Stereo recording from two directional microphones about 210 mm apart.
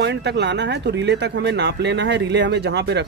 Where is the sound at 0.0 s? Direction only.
55° right (ahead or behind).